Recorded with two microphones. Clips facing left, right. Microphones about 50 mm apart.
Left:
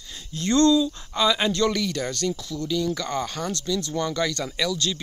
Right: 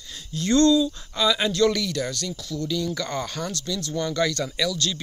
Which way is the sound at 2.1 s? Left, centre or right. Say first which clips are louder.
Left 5 dB; left.